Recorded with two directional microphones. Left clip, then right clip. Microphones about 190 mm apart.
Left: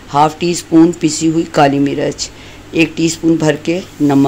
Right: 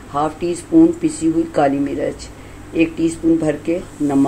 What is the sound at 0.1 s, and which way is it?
Speech, 60° left (ahead or behind).